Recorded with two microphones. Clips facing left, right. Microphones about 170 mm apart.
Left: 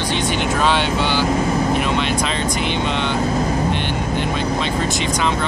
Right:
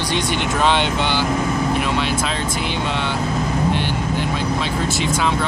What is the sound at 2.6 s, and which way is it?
Speech, 60° left (ahead or behind).